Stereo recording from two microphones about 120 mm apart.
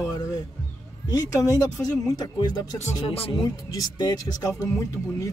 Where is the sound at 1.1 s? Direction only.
30° left (ahead or behind).